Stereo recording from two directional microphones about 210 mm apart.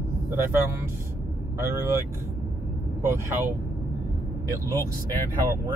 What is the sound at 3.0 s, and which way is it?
Speech, 10° right (ahead or behind).